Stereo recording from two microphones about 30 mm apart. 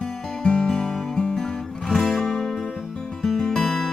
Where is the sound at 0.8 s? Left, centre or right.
Centre.